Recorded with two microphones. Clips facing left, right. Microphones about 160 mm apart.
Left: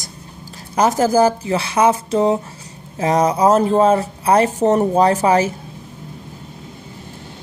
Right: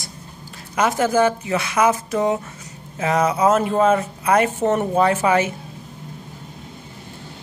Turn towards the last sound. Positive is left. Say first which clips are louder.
# left 3 dB
turn(degrees=35)  # may be behind; listen again after turning